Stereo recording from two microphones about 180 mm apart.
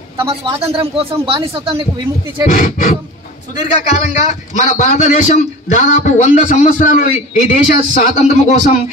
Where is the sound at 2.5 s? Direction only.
45° left (ahead or behind).